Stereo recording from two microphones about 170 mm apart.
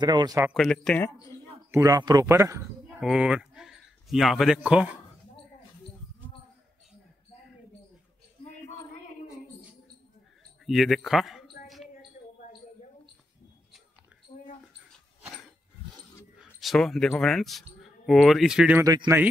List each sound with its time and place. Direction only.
0.0 s speech: 25° right (ahead or behind)
0.4 s speech: centre (ahead or behind)
1.7 s speech: 20° right (ahead or behind)
3.0 s speech: 5° right (ahead or behind)
10.6 s speech: centre (ahead or behind)
11.6 s a sound: centre (ahead or behind)
16.5 s speech: centre (ahead or behind)
18.9 s speech: 20° right (ahead or behind)